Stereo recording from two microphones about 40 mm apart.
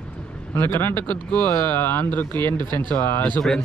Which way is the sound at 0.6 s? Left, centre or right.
Left.